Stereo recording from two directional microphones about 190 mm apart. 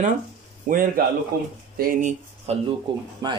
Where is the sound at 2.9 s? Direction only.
25° right (ahead or behind).